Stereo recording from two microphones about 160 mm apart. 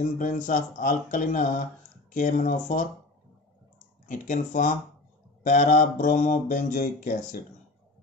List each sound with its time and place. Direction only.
0.0 s speech: 55° left (ahead or behind)
4.1 s speech: 50° left (ahead or behind)